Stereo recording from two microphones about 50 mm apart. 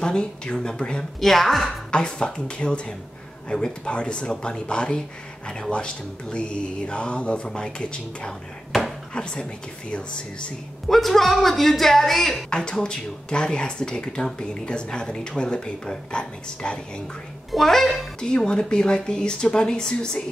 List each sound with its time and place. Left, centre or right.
0.0 s speech: centre
1.2 s speech: centre
1.9 s speech: centre
10.9 s speech: centre
12.4 s speech: centre
17.5 s speech: centre
18.2 s speech: centre